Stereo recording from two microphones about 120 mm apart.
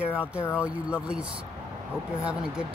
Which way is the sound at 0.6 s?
10° right (ahead or behind).